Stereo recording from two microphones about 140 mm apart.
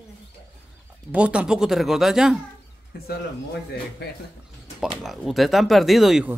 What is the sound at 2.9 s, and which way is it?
Speech, 90° left.